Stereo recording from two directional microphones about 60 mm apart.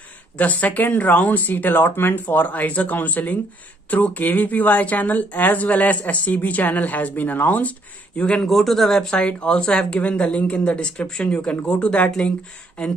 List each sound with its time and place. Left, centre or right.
0.4 s a woman's voice: left
8.4 s speech: centre
9.1 s speech: centre